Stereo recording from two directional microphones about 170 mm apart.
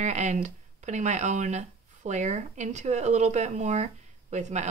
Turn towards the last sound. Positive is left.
turn(degrees=-45)  # may be behind; listen again after turning